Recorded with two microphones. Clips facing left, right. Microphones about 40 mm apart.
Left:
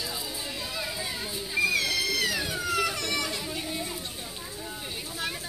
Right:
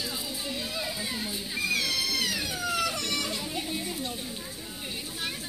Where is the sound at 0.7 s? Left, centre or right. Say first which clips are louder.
Even; centre.